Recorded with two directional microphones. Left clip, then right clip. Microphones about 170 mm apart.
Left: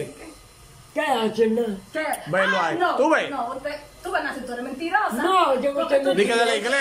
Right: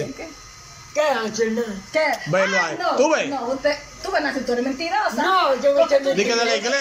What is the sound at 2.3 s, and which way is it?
Speech, 5° right (ahead or behind).